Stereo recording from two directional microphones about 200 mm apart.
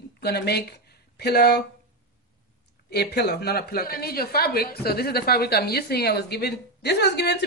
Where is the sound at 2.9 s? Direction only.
55° left (ahead or behind).